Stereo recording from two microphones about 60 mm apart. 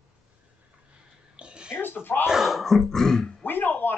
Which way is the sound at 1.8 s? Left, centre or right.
Left.